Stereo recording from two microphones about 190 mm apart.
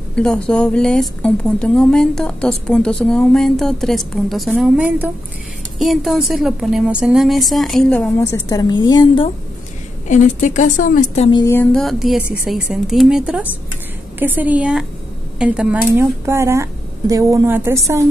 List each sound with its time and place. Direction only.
0.1 s a woman's voice: 5° left (ahead or behind); by 9.3 s 25° left (ahead or behind)
10.0 s a woman's voice: 40° left (ahead or behind)
11.2 s a woman's voice: 25° left (ahead or behind)
11.5 s a woman's voice: 5° left (ahead or behind); by 18.0 s 15° right (ahead or behind)